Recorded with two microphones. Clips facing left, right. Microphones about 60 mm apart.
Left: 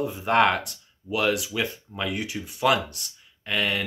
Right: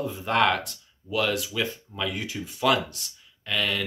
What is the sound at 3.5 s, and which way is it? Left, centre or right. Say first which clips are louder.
Speech: left 1 dB; centre.